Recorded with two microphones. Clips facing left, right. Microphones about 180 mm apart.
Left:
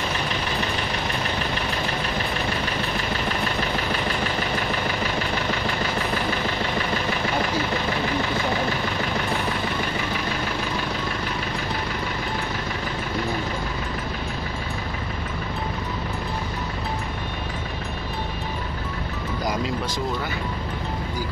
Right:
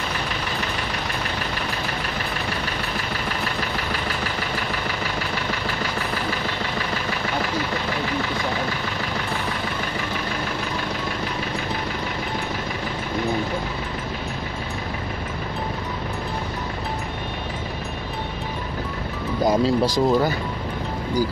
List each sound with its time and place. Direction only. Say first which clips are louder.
19.4 s speech: right 9 dB; 30° right (ahead or behind)